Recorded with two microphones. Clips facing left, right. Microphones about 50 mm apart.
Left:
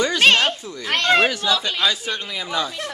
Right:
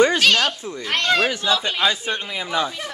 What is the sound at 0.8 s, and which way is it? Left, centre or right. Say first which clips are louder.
Speech: left 2 dB; centre.